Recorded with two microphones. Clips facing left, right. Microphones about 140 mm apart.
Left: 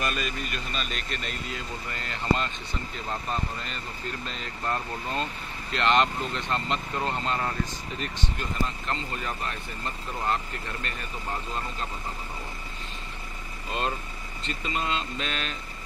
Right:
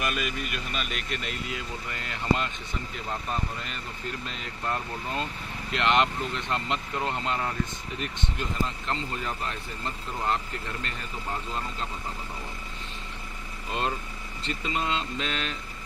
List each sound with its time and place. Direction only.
0.0 s speech: 10° right (ahead or behind)
4.6 s speech: 10° right (ahead or behind)
13.7 s speech: 20° right (ahead or behind)